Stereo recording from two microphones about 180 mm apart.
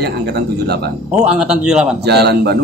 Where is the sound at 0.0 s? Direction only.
65° right (ahead or behind).